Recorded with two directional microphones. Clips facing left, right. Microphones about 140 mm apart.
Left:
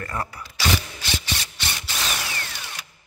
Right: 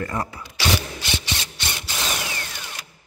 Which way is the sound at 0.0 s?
20° right (ahead or behind).